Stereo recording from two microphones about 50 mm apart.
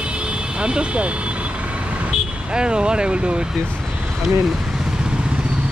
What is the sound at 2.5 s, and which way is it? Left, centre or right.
Speech, centre.